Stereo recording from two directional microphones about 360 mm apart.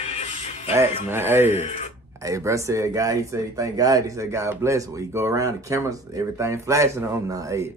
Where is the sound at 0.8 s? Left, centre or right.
Centre.